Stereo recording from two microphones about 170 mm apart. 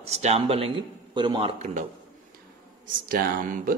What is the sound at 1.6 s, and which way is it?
Speech, 50° right (ahead or behind).